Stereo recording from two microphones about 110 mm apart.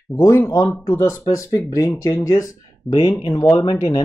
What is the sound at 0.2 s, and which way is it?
Speech, 30° left (ahead or behind).